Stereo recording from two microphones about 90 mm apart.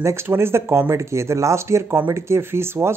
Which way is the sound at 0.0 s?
30° right (ahead or behind).